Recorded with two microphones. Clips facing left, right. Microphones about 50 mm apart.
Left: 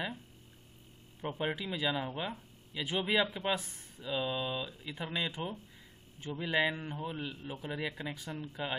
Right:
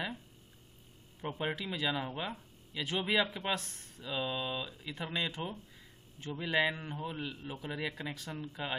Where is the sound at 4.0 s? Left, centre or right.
Centre.